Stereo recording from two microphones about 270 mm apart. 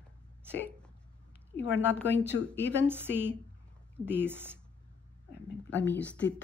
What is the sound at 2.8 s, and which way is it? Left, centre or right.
Speech, centre.